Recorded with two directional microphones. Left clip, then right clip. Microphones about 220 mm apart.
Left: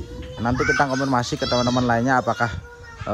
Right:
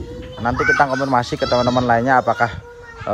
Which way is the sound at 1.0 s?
25° left (ahead or behind).